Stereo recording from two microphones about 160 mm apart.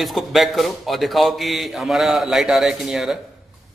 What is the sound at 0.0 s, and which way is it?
A man's voice, centre (ahead or behind).